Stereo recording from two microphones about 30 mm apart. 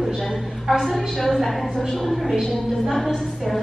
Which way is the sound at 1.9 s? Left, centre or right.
Centre.